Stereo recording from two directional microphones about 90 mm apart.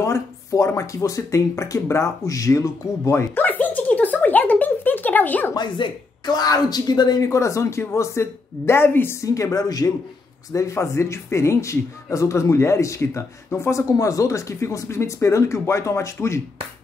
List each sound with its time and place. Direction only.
0.0 s speech: 35° left (ahead or behind)
3.4 s music: 20° left (ahead or behind)
5.5 s speech: 55° left (ahead or behind); by 9.1 s 25° left (ahead or behind)
9.2 s speech: 35° left (ahead or behind)